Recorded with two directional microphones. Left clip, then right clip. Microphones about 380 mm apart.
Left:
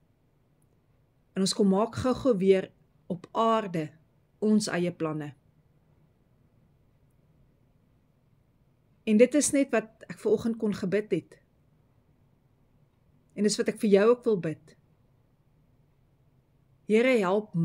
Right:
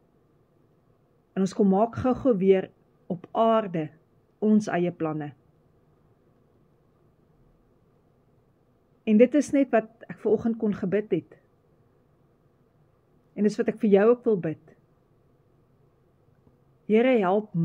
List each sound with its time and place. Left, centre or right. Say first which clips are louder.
1.3 s speech: right 2 dB; left
9.0 s a woman's voice: right 2 dB; centre
13.3 s a woman's voice: right 2 dB; centre
16.8 s speech: right 2 dB; centre